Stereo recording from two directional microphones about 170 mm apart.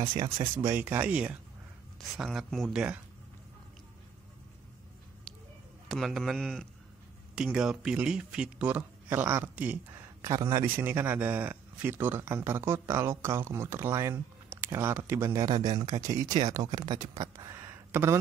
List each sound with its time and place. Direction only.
0.6 s speech: 15° right (ahead or behind)
5.9 s speech: centre (ahead or behind); by 18.2 s 15° right (ahead or behind)